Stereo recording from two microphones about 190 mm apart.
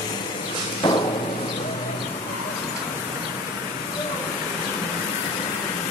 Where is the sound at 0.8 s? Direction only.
25° left (ahead or behind).